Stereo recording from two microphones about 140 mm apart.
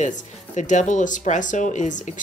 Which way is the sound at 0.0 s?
60° left (ahead or behind).